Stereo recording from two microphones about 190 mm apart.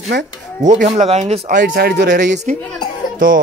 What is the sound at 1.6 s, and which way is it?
Speech, 55° right (ahead or behind).